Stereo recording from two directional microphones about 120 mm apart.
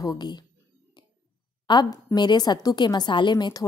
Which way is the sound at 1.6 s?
35° left (ahead or behind).